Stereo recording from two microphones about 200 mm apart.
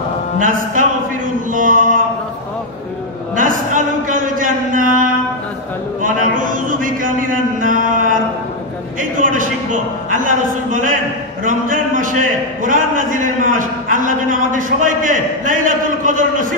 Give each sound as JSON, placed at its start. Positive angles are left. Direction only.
{"t": 0.4, "sound": "a man's voice", "side_deg": -40}
{"t": 3.3, "sound": "a sound", "side_deg": -40}
{"t": 6.0, "sound": "a man's voice", "side_deg": -40}
{"t": 9.2, "sound": "a man's voice", "side_deg": -40}